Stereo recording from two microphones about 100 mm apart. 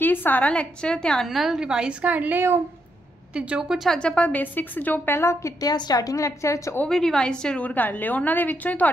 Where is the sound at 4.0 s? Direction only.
10° left (ahead or behind); by 6.8 s 30° left (ahead or behind).